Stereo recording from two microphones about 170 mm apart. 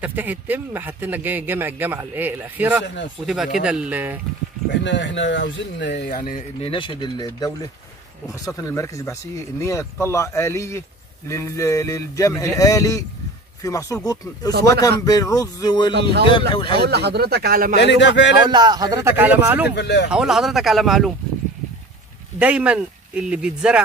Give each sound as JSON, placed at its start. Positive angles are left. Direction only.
{"t": 0.0, "sound": "speech", "side_deg": -10}
{"t": 4.6, "sound": "speech", "side_deg": 90}
{"t": 6.6, "sound": "speech", "side_deg": 30}
{"t": 15.9, "sound": "speech", "side_deg": -75}
{"t": 16.3, "sound": "speech", "side_deg": 30}
{"t": 16.8, "sound": "speech", "side_deg": -75}
{"t": 17.7, "sound": "speech", "side_deg": 90}
{"t": 18.5, "sound": "speech", "side_deg": -25}
{"t": 19.7, "sound": "speech", "side_deg": 90}
{"t": 20.1, "sound": "speech", "side_deg": -5}
{"t": 22.4, "sound": "speech", "side_deg": -5}